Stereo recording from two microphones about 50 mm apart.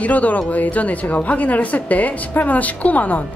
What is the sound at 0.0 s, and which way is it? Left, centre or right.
A woman's voice, left.